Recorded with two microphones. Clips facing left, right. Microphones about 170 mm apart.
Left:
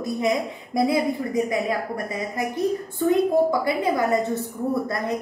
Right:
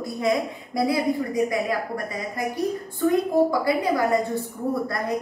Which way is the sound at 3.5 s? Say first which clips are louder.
Even; 25° left (ahead or behind).